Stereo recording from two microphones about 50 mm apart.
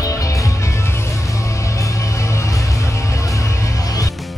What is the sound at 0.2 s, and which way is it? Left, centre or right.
Music, left.